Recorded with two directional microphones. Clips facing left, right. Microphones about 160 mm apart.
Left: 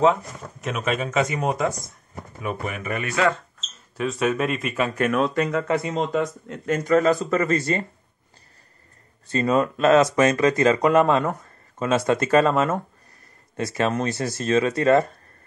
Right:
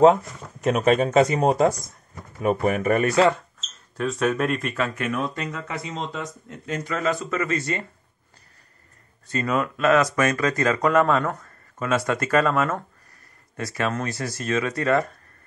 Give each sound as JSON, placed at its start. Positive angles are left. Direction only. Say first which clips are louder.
{"t": 0.7, "sound": "speech", "louder": "right 6 dB", "side_deg": -35}
{"t": 3.9, "sound": "speech", "louder": "even", "side_deg": 0}
{"t": 5.1, "sound": "speech", "louder": "left 6 dB", "side_deg": 90}
{"t": 9.3, "sound": "speech", "louder": "left 4 dB", "side_deg": 30}